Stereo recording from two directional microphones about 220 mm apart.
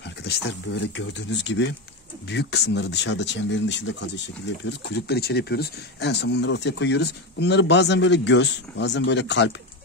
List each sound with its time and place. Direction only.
0.2 s speech: 50° left (ahead or behind)